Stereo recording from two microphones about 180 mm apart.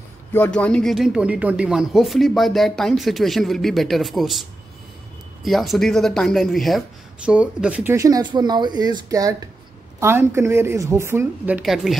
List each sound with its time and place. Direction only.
0.3 s a woman's voice: 10° left (ahead or behind)